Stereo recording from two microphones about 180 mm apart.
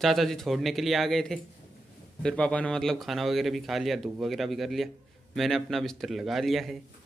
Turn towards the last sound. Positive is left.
turn(degrees=0)  # may be behind; listen again after turning